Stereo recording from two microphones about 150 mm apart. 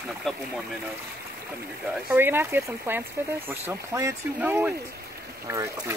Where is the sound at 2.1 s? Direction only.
15° right (ahead or behind).